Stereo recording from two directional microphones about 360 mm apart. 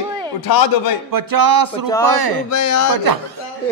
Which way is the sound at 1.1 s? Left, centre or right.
Right.